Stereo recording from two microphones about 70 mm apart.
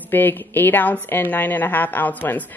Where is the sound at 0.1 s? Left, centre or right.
Left.